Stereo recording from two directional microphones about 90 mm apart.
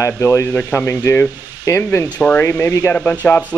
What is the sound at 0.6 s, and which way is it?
Speech, 15° left (ahead or behind).